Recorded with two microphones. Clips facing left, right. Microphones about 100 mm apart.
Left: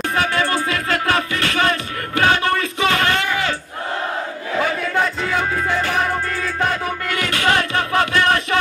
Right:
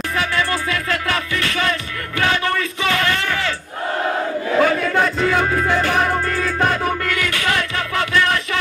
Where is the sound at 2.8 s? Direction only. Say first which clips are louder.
Left 2 dB; 35° left (ahead or behind).